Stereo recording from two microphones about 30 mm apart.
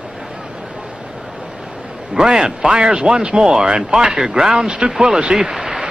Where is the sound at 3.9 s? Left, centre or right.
Right.